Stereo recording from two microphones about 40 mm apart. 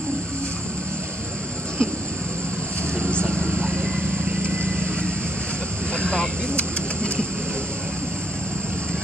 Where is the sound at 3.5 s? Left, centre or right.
Right.